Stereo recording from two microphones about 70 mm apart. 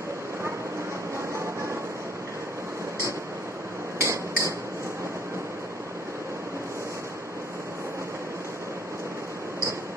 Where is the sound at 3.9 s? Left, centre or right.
Right.